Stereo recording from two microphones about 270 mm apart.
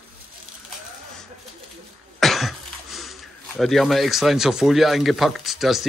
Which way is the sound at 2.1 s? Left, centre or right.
Centre.